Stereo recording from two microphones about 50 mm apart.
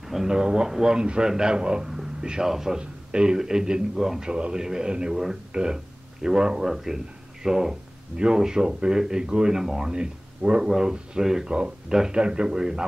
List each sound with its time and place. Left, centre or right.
0.1 s speech: centre